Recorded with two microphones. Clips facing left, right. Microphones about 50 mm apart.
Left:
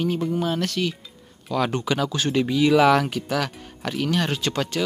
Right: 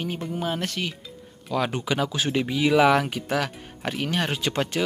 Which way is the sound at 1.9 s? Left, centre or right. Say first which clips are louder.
Left 1 dB; centre.